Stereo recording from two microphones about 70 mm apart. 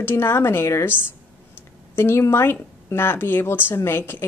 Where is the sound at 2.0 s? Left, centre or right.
Left.